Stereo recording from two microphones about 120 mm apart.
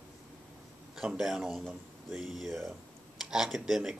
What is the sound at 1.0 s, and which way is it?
Speech, 5° right (ahead or behind).